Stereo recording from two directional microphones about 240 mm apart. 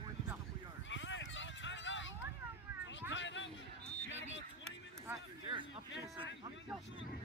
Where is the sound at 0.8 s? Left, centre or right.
Left.